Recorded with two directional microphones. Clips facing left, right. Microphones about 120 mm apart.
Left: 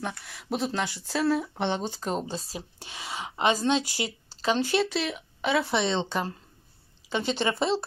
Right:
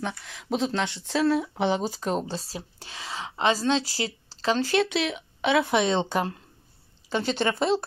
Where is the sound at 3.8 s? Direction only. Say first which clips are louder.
Right 1 dB; 35° right (ahead or behind).